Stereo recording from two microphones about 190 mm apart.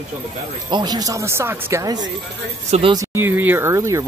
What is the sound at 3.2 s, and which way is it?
Speech, 10° right (ahead or behind).